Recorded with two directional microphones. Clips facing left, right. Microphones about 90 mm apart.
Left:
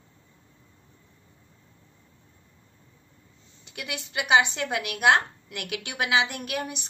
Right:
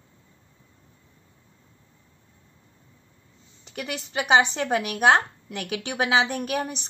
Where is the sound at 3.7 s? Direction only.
35° right (ahead or behind).